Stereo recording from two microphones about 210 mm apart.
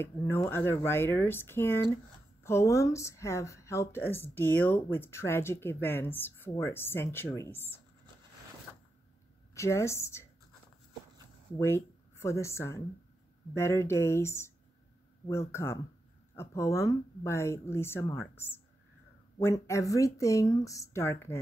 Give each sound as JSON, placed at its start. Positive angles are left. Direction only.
{"t": 0.0, "sound": "speech", "side_deg": 15}
{"t": 9.5, "sound": "speech", "side_deg": 15}
{"t": 11.5, "sound": "speech", "side_deg": 10}